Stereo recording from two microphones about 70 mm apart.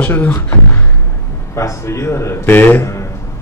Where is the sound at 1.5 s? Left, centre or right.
Left.